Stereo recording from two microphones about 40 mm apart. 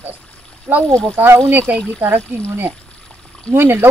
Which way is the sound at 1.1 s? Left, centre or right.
Right.